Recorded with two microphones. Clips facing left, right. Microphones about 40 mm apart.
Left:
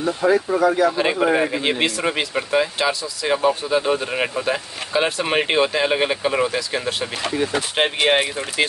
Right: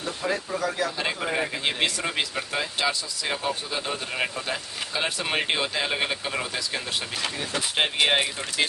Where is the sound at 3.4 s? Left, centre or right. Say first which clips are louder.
Left 10 dB; left.